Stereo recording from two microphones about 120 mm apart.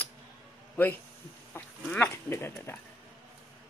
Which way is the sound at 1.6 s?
20° left (ahead or behind).